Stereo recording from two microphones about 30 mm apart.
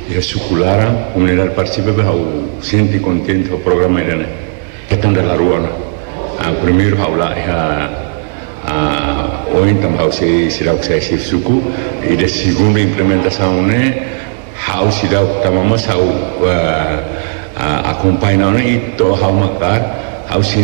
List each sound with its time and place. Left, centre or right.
0.1 s a man's voice: left
0.7 s a man's voice: centre